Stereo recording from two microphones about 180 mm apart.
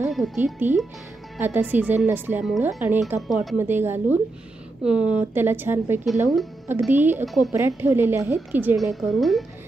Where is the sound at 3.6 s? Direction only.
10° right (ahead or behind).